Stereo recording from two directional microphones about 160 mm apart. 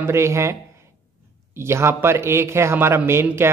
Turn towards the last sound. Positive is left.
turn(degrees=-15)  # may be behind; listen again after turning